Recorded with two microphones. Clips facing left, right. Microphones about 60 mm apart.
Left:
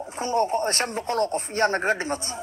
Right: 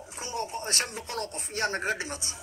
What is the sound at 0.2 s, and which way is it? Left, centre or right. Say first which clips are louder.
A man's voice: left 11 dB; left.